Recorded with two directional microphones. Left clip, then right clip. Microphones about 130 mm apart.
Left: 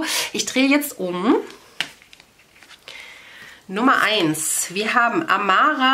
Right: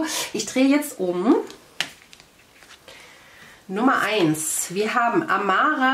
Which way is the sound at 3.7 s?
40° left (ahead or behind).